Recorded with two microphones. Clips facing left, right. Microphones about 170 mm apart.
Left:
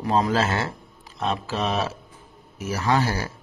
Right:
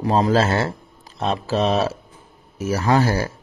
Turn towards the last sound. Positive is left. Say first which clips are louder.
# right 4 dB
turn(degrees=-45)  # may be behind; listen again after turning